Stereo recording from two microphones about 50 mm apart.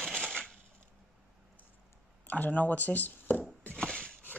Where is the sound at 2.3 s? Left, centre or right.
Left.